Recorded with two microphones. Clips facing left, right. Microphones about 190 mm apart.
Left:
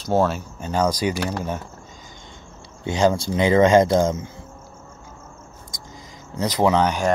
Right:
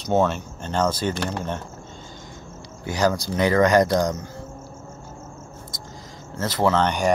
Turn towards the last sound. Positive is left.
turn(degrees=15)  # may be behind; listen again after turning